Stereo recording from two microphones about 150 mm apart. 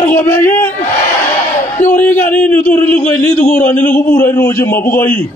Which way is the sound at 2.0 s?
15° left (ahead or behind).